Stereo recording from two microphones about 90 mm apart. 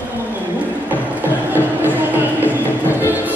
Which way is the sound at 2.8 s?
20° left (ahead or behind).